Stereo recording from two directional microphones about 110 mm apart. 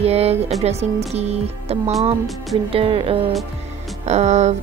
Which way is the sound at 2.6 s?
60° right (ahead or behind).